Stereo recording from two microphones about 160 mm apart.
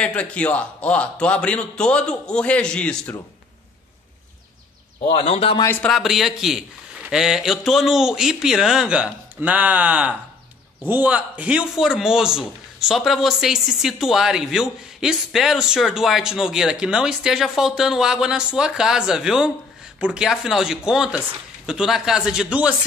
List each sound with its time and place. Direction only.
0.0 s a man's voice: 10° left (ahead or behind)
5.0 s a man's voice: 35° left (ahead or behind)
5.6 s a man's voice: 15° left (ahead or behind)
5.9 s a man's voice: centre (ahead or behind)